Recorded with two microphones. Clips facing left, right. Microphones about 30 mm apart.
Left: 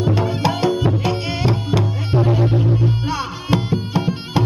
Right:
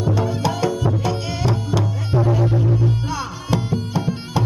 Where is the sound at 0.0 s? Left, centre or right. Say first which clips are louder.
Left 2 dB; left.